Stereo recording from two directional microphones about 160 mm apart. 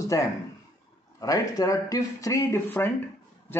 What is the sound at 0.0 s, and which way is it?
A man's voice, 20° left (ahead or behind).